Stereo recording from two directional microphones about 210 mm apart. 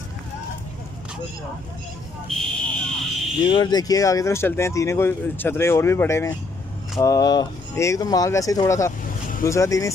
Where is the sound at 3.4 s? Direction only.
20° left (ahead or behind).